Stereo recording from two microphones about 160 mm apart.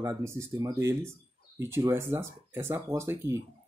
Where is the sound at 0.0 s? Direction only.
15° right (ahead or behind).